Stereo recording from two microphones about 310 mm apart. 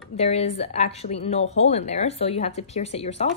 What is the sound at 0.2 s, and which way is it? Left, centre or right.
A woman's voice, centre.